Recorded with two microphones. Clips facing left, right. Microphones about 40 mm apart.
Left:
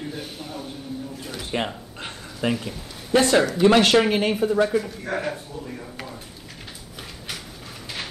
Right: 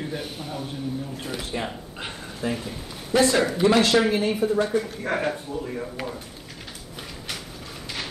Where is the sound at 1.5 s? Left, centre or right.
Left.